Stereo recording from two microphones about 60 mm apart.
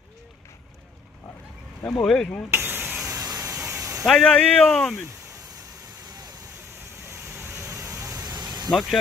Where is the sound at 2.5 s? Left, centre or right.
Right.